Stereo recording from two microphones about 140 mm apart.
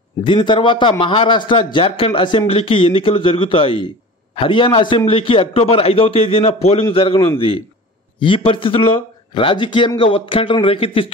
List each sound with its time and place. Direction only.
0.2 s a man's voice: 35° left (ahead or behind)